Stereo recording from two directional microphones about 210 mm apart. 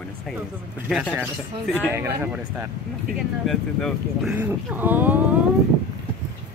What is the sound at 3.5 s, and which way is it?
Speech, centre (ahead or behind).